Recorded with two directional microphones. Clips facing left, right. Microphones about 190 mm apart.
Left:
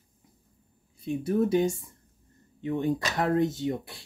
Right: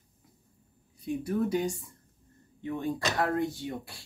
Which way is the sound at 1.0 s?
25° left (ahead or behind).